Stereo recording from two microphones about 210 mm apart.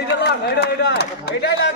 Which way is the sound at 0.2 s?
50° left (ahead or behind).